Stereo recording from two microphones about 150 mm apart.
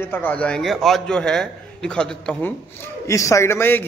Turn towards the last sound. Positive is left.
turn(degrees=15)  # may be behind; listen again after turning